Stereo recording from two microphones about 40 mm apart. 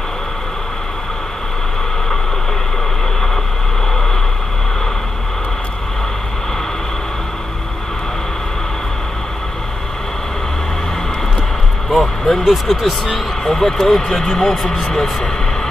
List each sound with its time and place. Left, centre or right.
11.9 s a sound: centre
12.4 s speech: centre
14.8 s speech: centre